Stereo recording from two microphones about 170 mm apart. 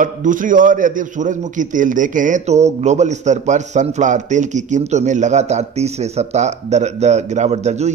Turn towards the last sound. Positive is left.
turn(degrees=-40)  # may be behind; listen again after turning